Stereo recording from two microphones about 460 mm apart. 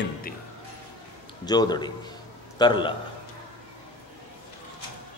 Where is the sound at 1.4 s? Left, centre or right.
Centre.